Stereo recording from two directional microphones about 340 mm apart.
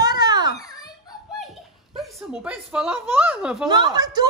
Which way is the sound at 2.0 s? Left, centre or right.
Centre.